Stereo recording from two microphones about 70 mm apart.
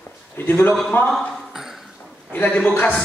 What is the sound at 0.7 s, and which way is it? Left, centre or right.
Speech, centre.